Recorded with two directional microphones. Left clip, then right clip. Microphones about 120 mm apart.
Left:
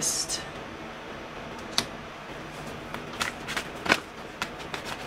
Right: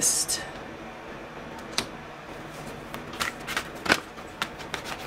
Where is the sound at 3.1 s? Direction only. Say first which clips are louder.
Right 1 dB; 20° right (ahead or behind).